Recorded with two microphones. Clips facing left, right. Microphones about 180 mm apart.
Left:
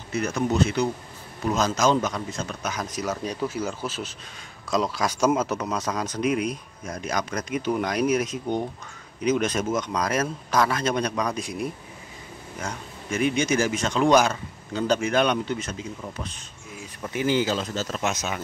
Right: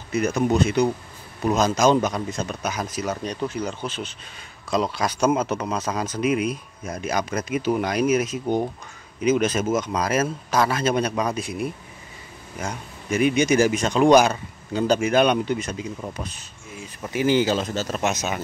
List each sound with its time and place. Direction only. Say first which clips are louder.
0.1 s speech: right 4 dB; 15° right (ahead or behind)
17.5 s speech: right 3 dB; 20° right (ahead or behind)